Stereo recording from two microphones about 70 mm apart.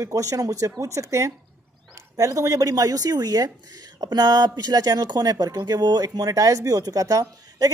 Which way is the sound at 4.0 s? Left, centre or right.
Right.